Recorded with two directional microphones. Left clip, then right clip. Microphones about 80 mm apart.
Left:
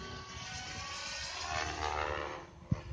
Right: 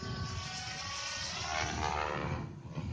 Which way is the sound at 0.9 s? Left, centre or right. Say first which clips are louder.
Right 2 dB; right.